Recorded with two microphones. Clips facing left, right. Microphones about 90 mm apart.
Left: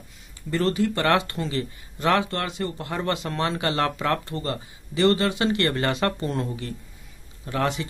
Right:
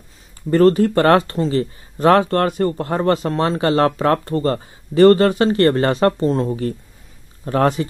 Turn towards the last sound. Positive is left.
turn(degrees=-40)  # may be behind; listen again after turning